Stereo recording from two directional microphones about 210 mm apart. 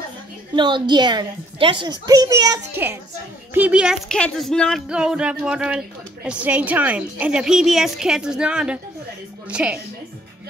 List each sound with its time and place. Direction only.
0.6 s a child's voice: 20° right (ahead or behind); by 9.8 s 5° right (ahead or behind)